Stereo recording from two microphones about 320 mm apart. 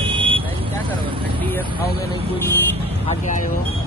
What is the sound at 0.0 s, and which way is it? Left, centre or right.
Vehicle, centre.